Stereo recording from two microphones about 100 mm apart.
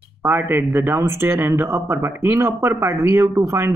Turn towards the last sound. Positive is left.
turn(degrees=-30)  # may be behind; listen again after turning